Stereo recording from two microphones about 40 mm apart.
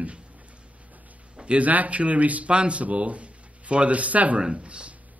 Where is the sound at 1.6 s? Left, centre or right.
Right.